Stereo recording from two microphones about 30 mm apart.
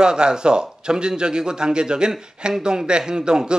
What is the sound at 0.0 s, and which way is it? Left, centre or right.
Speech, right.